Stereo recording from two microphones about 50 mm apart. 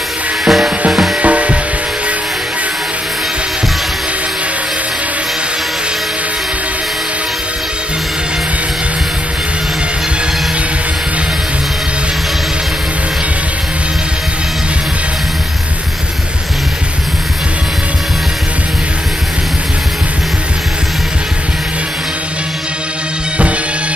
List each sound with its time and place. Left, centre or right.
0.5 s music: centre
1.2 s music: right